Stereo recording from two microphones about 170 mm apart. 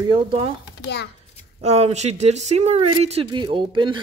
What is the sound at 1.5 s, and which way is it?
Speech, 40° right (ahead or behind).